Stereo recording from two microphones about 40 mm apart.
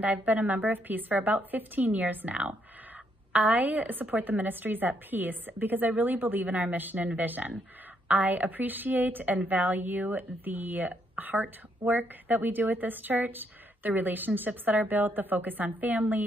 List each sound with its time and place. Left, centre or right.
0.0 s a woman's voice: right
3.3 s a woman's voice: right
6.4 s a woman's voice: right